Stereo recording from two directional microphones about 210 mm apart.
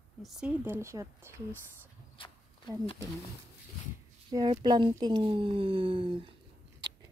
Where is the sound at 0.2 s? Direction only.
Centre (ahead or behind).